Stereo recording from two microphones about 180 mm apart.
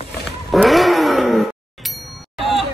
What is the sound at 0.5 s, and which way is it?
Vehicle, centre (ahead or behind).